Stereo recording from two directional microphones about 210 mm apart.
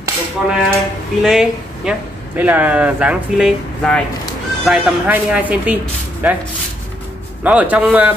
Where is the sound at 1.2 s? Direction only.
5° right (ahead or behind).